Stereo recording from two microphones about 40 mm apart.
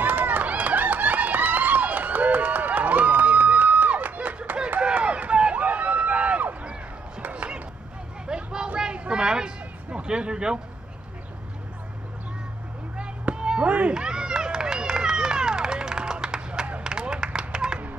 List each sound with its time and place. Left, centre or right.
0.0 s run: right
5.3 s run: right
7.2 s a sound: right
8.3 s vehicle: right
8.7 s a sound: right
12.9 s chop: right
13.7 s run: right
13.9 s run: centre